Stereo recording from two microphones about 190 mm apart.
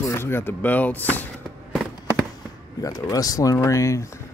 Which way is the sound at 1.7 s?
Centre (ahead or behind).